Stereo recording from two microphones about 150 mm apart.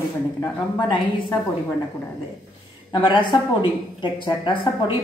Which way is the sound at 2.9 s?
35° left (ahead or behind).